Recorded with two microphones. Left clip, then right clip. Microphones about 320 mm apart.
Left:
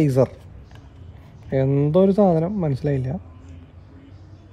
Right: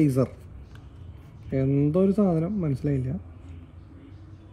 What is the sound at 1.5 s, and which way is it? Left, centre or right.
Speech, left.